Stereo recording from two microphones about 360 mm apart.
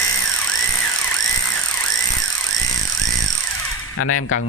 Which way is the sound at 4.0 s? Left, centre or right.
Left.